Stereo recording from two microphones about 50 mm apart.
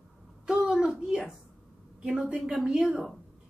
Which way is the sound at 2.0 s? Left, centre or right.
Centre.